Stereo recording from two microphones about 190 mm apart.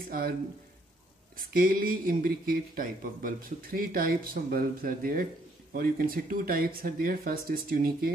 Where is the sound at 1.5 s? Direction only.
50° right (ahead or behind).